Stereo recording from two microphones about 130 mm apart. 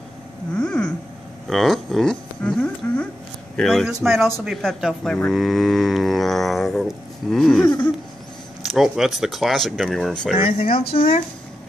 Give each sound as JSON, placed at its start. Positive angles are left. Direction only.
{"t": 0.6, "sound": "a sound", "side_deg": 5}
{"t": 3.5, "sound": "speech", "side_deg": 5}
{"t": 4.5, "sound": "didgeridoo", "side_deg": 0}
{"t": 8.7, "sound": "speech", "side_deg": -5}
{"t": 10.3, "sound": "speech", "side_deg": 45}